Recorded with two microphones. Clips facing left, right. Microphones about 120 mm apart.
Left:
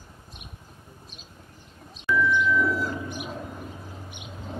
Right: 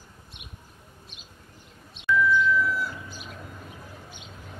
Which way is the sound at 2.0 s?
40° left (ahead or behind).